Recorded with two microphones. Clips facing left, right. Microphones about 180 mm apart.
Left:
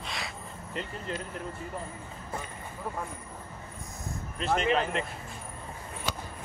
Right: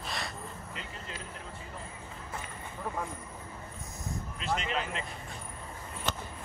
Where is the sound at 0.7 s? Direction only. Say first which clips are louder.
Left 8 dB; 50° left (ahead or behind).